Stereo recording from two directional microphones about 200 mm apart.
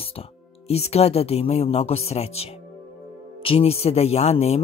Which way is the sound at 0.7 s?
30° left (ahead or behind).